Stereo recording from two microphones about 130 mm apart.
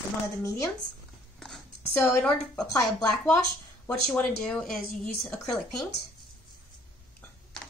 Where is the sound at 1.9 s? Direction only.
15° left (ahead or behind).